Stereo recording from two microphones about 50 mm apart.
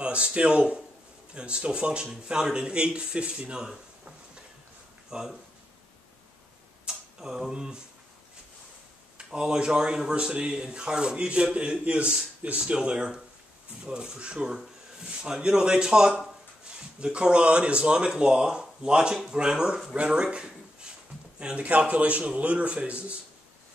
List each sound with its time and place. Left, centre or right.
0.0 s speech: right
5.1 s speech: centre
6.9 s a sound: centre
9.2 s speech: centre